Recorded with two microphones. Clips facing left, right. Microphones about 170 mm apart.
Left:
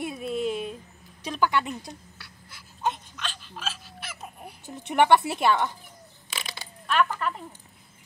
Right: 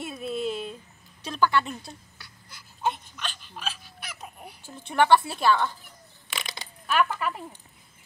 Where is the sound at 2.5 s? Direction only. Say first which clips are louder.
Even; 5° right (ahead or behind).